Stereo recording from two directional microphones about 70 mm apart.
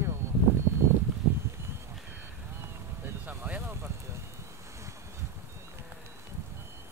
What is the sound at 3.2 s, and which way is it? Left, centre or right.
Boat, right.